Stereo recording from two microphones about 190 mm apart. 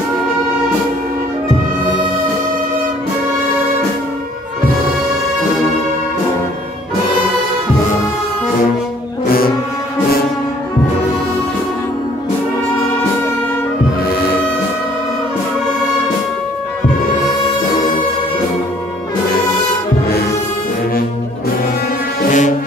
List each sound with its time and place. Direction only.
22.2 s music: 40° left (ahead or behind)